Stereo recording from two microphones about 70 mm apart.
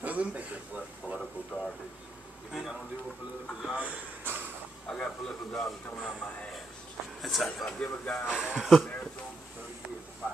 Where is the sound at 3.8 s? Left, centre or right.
Right.